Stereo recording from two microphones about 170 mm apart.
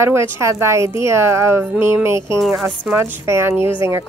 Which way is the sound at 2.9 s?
15° right (ahead or behind).